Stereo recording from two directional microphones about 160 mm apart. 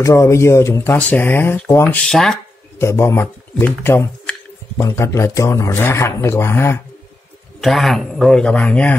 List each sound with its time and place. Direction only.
0.0 s speech: 20° left (ahead or behind)
2.0 s a man's voice: 5° left (ahead or behind)
2.8 s speech: 15° left (ahead or behind)
7.6 s a man's voice: centre (ahead or behind)